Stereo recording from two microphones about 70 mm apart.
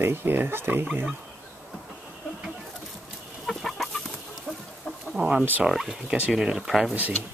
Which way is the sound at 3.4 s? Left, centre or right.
Centre.